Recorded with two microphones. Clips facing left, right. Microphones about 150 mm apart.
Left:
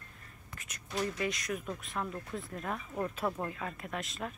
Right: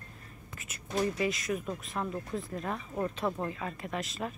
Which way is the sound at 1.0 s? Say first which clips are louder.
Right 4 dB; 5° right (ahead or behind).